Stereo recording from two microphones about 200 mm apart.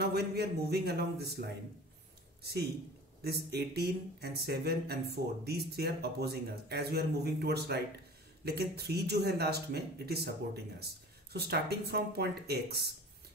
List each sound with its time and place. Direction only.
0.0 s speech: 55° right (ahead or behind)
3.2 s speech: 50° right (ahead or behind)